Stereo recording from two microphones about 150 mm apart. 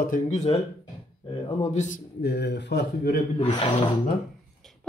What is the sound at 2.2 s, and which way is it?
Speech, 90° left.